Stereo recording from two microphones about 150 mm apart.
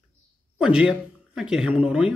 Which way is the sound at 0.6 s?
5° right (ahead or behind).